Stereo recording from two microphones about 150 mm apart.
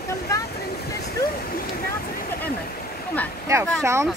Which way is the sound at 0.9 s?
85° left.